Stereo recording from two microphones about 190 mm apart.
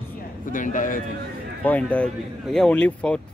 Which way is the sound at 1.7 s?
10° left (ahead or behind).